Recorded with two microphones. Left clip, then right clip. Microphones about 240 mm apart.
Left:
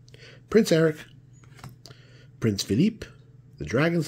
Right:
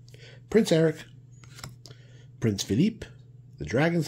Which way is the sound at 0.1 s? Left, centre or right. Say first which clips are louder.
Left 2 dB; centre.